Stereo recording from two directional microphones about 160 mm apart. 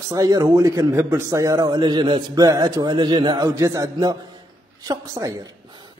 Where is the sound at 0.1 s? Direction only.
25° right (ahead or behind).